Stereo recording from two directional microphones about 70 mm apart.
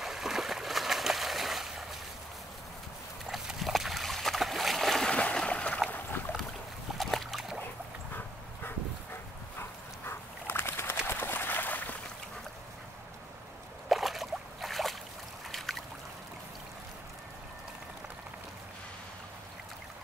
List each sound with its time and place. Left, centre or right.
0.0 s a sound: centre
3.3 s splash: centre
5.1 s splash: centre
5.9 s boat: left
7.0 s boat: centre
9.6 s dog: left
11.1 s a sound: left
13.8 s boat: centre
15.5 s a sound: centre